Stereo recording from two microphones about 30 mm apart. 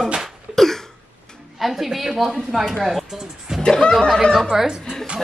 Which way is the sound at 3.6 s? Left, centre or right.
Left.